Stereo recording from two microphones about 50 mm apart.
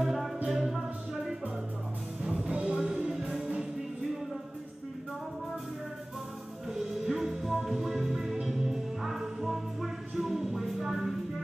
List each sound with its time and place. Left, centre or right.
0.0 s music: centre
2.2 s music: centre
6.7 s music: centre